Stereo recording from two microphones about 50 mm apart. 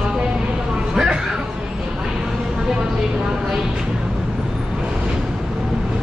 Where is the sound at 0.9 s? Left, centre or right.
Centre.